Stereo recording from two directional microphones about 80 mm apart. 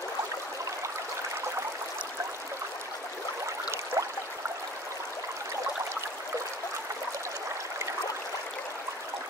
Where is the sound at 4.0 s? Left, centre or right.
Right.